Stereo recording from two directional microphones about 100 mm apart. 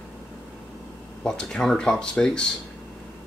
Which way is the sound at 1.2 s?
10° left (ahead or behind).